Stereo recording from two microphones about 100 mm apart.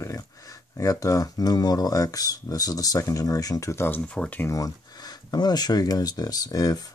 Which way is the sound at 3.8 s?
15° left (ahead or behind).